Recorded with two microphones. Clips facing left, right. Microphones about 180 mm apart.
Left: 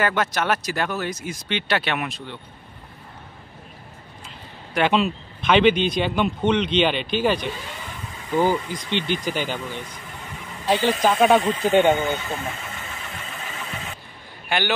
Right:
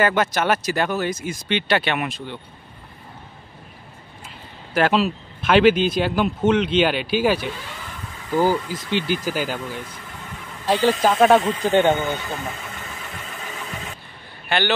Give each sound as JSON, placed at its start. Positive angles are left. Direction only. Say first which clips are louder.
{"t": 0.0, "sound": "speech", "louder": "right 3 dB", "side_deg": 0}
{"t": 4.7, "sound": "speech", "louder": "right 1 dB", "side_deg": 0}
{"t": 10.9, "sound": "speech", "louder": "right 2 dB", "side_deg": 0}
{"t": 11.6, "sound": "speech", "louder": "even", "side_deg": 15}
{"t": 11.9, "sound": "speech", "louder": "even", "side_deg": 0}
{"t": 14.5, "sound": "speech", "louder": "right 2 dB", "side_deg": 10}